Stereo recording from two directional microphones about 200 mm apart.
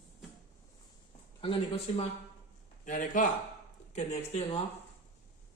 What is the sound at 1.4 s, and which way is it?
Speech, 25° left (ahead or behind).